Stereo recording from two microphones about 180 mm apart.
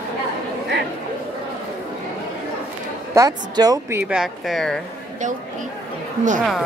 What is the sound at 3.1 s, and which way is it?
A woman's voice, 20° right (ahead or behind).